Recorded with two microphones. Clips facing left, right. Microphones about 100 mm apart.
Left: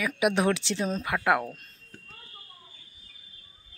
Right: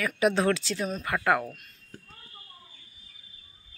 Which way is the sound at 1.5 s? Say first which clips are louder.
Left 1 dB; 35° left (ahead or behind).